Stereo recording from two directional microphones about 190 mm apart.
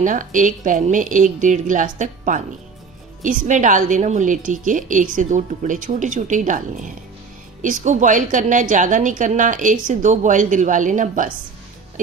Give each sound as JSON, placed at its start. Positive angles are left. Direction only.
{"t": 0.0, "sound": "a woman's voice", "side_deg": -45}